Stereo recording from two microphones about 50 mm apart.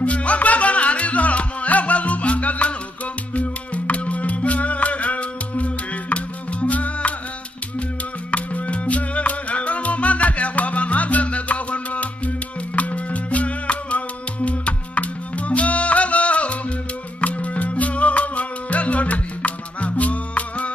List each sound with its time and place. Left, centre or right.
0.0 s music: left
8.3 s music: left